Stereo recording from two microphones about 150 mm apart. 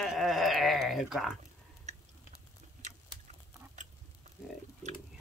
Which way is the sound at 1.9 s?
50° right (ahead or behind).